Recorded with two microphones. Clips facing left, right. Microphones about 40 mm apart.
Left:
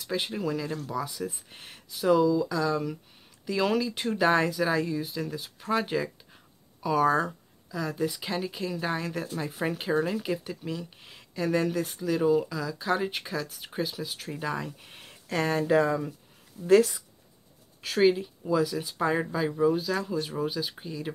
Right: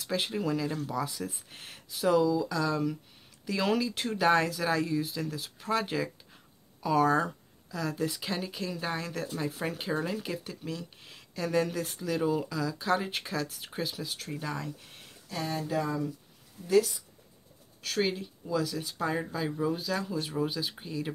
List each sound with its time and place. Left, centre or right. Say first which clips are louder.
0.0 s speech: left 1 dB; centre; by 15.0 s left
15.2 s speech: left 7 dB; left
15.5 s speech: left 7 dB; left
16.6 s speech: left 5 dB; left
17.8 s speech: left 7 dB; centre
19.4 s speech: left 8 dB; centre